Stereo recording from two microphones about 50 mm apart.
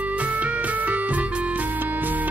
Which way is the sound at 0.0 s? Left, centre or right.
Right.